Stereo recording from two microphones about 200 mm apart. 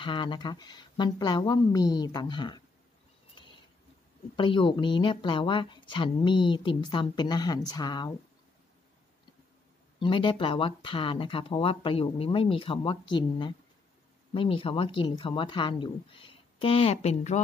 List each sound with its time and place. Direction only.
0.0 s a woman's voice: 25° left (ahead or behind)
4.4 s a woman's voice: 25° left (ahead or behind)
9.9 s a woman's voice: 25° left (ahead or behind)